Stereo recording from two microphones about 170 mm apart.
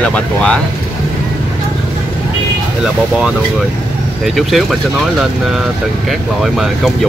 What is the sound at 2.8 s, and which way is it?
Speech, centre (ahead or behind).